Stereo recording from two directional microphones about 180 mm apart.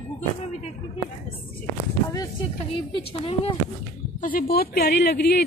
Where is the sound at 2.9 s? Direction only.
25° left (ahead or behind).